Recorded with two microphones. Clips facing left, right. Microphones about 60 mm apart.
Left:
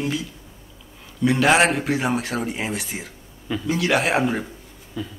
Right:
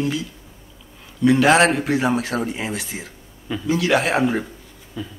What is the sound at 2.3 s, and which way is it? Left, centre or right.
Speech, right.